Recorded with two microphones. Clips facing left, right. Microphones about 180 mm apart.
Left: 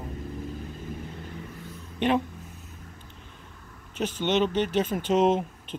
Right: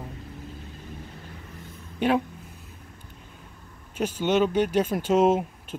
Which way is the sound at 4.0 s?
10° right (ahead or behind).